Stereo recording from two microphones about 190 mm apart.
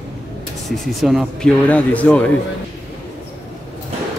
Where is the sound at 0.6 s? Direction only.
Centre (ahead or behind).